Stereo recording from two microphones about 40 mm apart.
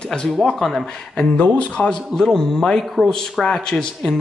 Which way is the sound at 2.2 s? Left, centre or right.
Centre.